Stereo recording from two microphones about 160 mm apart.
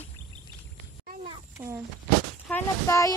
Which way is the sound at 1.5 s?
15° right (ahead or behind).